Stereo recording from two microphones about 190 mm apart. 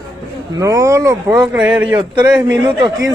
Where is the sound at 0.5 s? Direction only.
15° right (ahead or behind).